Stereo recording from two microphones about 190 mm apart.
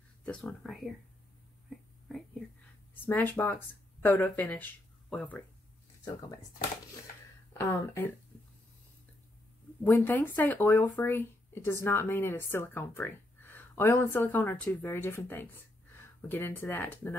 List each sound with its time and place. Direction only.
0.2 s speech: 5° left (ahead or behind)
2.1 s whispering: centre (ahead or behind)
2.9 s speech: 10° left (ahead or behind)
7.5 s speech: 15° left (ahead or behind)
9.8 s speech: 10° left (ahead or behind)